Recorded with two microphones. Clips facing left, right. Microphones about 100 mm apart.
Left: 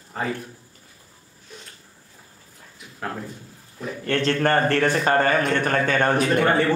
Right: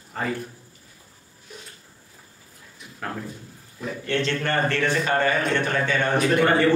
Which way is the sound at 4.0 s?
45° left (ahead or behind).